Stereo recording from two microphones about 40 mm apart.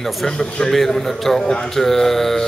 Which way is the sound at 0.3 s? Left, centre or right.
Centre.